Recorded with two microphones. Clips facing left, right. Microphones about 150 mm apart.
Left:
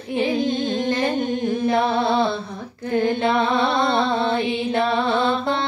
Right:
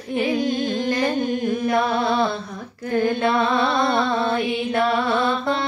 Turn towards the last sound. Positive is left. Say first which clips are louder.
# left 1 dB
turn(degrees=25)  # may be behind; listen again after turning